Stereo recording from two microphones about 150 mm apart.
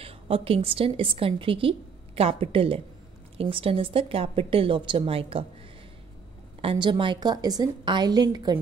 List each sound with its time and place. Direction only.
0.0 s a woman's voice: 40° right (ahead or behind)
6.6 s a woman's voice: 35° right (ahead or behind)